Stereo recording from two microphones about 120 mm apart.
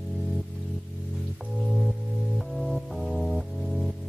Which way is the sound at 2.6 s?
Centre (ahead or behind).